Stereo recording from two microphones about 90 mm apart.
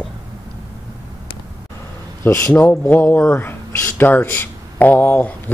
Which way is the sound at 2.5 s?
20° left (ahead or behind).